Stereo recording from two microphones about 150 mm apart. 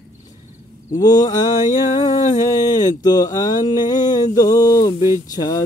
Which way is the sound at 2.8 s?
25° left (ahead or behind).